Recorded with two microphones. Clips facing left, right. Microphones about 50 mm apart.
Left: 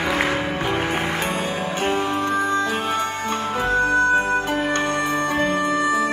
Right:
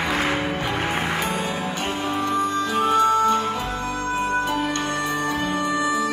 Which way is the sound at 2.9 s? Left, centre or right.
Left.